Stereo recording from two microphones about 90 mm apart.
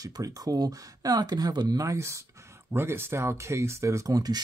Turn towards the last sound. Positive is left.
turn(degrees=-40)  # may be behind; listen again after turning